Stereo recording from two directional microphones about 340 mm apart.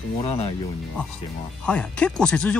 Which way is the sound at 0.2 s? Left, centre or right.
Centre.